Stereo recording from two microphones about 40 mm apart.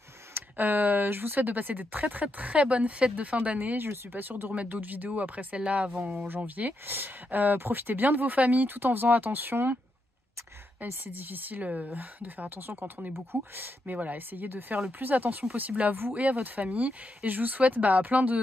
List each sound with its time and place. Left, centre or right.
0.6 s speech: right
2.3 s speech: right
3.5 s speech: right
6.2 s speech: right
7.2 s speech: right
7.5 s speech: right
8.7 s speech: right
11.1 s speech: right
11.6 s speech: right
13.1 s speech: right
13.8 s speech: right
16.2 s speech: right